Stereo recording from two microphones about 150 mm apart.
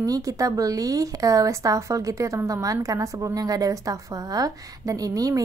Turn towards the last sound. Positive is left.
turn(degrees=-25)  # may be behind; listen again after turning